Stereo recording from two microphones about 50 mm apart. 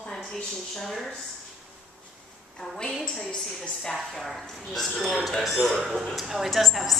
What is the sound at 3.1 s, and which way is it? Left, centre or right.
A woman's voice, centre.